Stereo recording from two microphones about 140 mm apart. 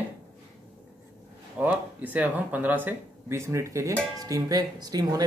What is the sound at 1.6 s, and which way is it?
Speech, 10° right (ahead or behind).